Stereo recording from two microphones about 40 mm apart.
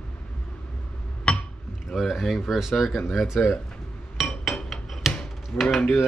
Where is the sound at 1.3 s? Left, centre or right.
Left.